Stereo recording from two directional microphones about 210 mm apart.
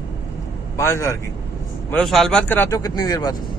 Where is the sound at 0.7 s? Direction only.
10° left (ahead or behind).